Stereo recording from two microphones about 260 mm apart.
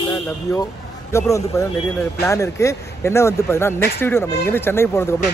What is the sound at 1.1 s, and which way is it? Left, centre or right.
Speech, centre.